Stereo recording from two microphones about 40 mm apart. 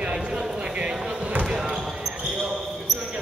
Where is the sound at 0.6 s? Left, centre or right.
Right.